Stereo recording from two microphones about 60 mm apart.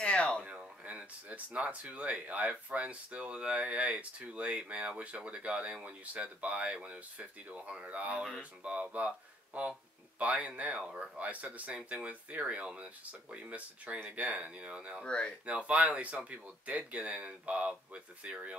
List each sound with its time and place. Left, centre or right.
0.0 s a sound: centre
0.5 s speech: right
15.0 s speech: centre
15.4 s speech: right